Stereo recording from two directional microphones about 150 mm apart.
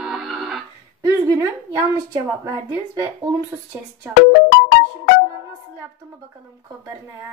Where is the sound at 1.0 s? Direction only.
20° right (ahead or behind).